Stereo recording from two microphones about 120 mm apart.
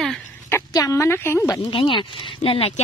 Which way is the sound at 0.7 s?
25° left (ahead or behind).